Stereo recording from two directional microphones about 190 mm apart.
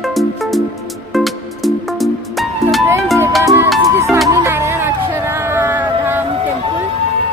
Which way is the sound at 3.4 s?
15° right (ahead or behind).